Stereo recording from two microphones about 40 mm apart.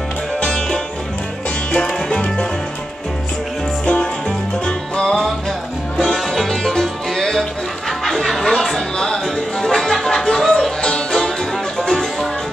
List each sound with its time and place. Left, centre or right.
0.4 s music: centre
1.8 s music: left
3.8 s music: left
6.0 s music: centre